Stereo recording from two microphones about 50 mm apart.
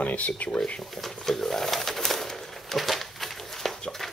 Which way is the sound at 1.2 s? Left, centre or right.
Centre.